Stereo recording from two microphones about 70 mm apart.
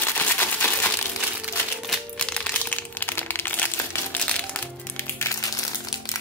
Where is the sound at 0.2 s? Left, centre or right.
Left.